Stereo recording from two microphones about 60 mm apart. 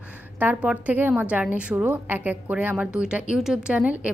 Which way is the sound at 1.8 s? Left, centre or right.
Right.